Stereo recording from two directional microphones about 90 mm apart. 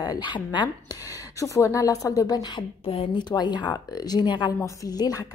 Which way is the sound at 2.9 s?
90° left.